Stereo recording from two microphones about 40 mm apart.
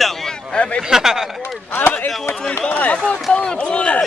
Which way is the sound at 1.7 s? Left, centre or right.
Left.